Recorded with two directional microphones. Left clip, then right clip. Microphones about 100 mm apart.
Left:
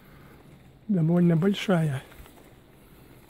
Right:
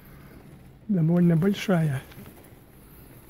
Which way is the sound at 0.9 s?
40° left (ahead or behind).